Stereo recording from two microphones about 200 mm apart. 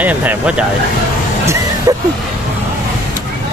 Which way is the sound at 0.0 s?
10° right (ahead or behind).